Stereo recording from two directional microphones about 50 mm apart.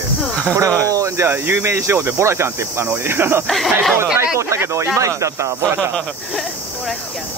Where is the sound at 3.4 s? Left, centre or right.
Centre.